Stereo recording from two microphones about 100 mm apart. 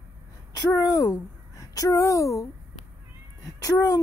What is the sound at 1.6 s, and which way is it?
Speech, 35° left (ahead or behind).